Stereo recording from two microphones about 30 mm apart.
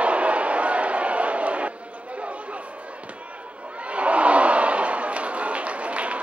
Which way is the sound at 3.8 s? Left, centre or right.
Right.